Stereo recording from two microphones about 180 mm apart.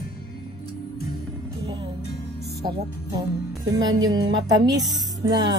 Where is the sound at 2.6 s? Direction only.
25° right (ahead or behind).